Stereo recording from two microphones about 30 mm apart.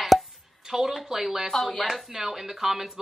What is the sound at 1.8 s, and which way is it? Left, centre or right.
Speech, centre.